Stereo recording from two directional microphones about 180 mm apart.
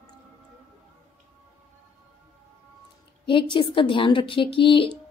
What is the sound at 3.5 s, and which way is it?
A woman's voice, 25° left (ahead or behind).